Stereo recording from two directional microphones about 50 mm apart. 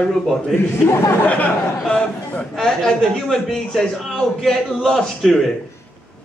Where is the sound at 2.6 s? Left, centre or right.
Centre.